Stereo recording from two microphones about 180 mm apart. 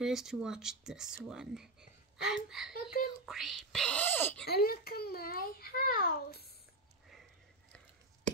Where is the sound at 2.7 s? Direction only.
55° left (ahead or behind).